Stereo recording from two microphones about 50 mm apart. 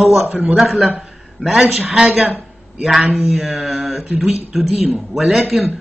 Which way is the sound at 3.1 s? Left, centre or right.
Right.